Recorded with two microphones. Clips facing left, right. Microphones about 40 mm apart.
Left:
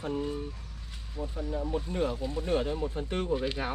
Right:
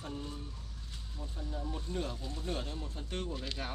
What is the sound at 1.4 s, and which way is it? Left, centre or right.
Speech, left.